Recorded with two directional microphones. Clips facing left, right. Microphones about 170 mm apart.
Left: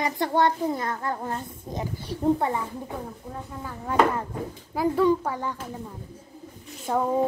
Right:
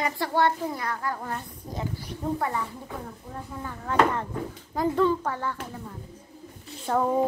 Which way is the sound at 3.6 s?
10° left (ahead or behind).